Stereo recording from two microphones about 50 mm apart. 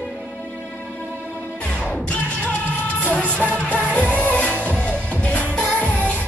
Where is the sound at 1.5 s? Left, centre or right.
Left.